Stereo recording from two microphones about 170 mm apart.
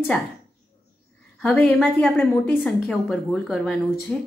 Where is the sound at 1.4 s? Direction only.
5° left (ahead or behind).